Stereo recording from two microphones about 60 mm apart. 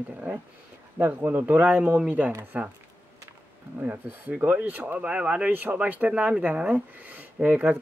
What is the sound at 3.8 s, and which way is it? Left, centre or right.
Speech, right.